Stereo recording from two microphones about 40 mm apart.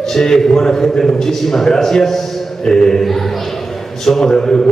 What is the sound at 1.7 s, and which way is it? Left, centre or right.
A man's voice, centre.